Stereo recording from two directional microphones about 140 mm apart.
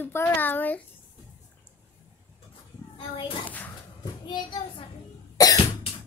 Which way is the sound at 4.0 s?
35° left (ahead or behind).